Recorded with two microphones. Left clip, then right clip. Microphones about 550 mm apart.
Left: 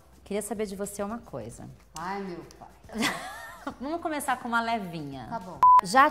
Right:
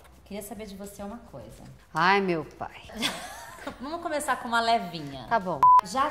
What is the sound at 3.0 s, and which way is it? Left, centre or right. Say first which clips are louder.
Speech: left 2 dB; left.